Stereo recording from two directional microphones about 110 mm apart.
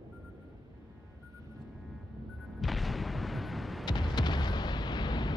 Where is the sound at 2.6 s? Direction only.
Centre (ahead or behind).